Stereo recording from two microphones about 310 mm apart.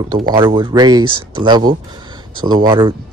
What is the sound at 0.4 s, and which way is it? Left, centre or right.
Speech, centre.